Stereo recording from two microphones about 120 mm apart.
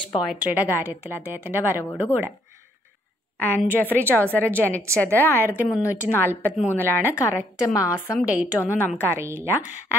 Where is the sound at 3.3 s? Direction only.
15° left (ahead or behind).